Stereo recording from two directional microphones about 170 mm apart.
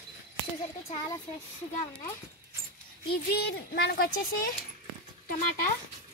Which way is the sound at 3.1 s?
70° left (ahead or behind).